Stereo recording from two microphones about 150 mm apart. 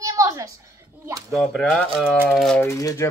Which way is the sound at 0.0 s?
20° right (ahead or behind).